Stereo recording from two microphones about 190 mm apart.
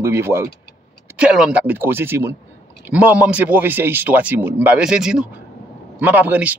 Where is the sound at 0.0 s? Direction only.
15° right (ahead or behind).